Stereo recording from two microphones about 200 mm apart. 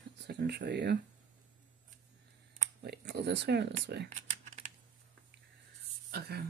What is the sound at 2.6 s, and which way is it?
Speech, 50° right (ahead or behind).